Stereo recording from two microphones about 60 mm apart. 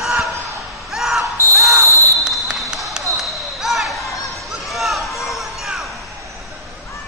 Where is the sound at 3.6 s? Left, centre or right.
Centre.